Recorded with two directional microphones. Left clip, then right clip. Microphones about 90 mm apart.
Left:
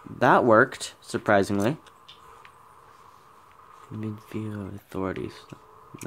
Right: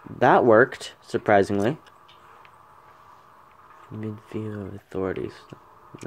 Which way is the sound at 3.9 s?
35° left (ahead or behind).